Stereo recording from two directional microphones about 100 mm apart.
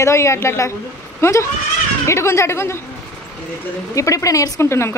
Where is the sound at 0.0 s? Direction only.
30° left (ahead or behind).